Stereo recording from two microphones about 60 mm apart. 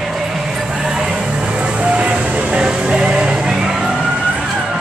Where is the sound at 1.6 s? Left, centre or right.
Right.